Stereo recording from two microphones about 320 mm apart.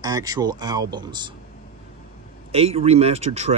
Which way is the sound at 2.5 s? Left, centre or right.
Centre.